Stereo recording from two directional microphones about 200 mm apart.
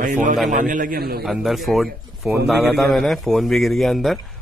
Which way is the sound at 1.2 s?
Centre (ahead or behind).